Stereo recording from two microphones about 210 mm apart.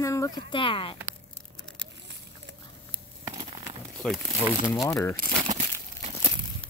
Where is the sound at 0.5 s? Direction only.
25° left (ahead or behind).